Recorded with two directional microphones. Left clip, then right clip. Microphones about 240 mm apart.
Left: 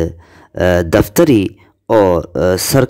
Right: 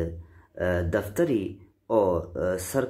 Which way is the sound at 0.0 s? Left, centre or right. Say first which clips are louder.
Left 13 dB; left.